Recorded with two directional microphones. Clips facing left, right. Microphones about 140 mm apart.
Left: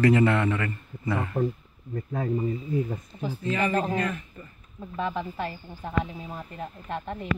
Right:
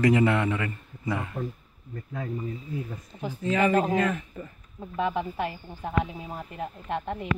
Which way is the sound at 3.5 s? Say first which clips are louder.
Right 3 dB; 90° right.